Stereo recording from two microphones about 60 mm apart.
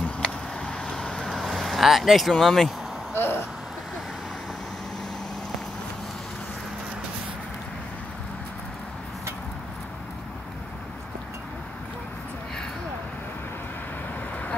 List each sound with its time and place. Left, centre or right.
0.2 s vehicle: centre
1.3 s speech: centre
3.2 s a sound: left